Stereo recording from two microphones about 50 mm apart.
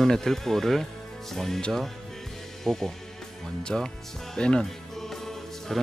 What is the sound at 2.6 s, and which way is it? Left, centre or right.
Speech, centre.